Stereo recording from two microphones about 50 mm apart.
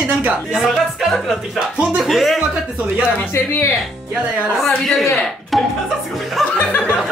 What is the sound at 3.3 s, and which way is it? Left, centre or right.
Speech, left.